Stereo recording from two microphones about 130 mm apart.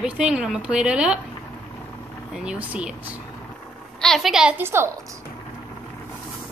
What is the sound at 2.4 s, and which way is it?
Speech, 10° right (ahead or behind).